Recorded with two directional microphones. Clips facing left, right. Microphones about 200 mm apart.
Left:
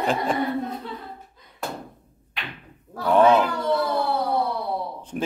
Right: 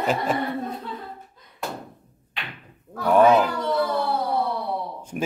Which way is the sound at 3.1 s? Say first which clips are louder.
Right 1 dB; 10° right (ahead or behind).